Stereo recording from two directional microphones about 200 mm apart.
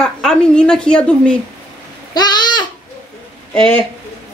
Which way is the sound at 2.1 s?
20° left (ahead or behind).